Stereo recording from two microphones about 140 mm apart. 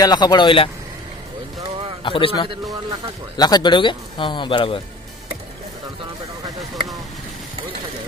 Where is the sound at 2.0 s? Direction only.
40° left (ahead or behind).